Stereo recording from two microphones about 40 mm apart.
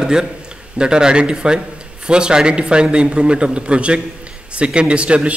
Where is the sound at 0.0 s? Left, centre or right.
Centre.